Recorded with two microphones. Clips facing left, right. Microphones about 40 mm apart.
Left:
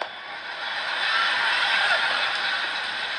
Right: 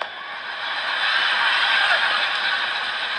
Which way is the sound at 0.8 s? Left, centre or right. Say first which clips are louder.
Right 3 dB; right.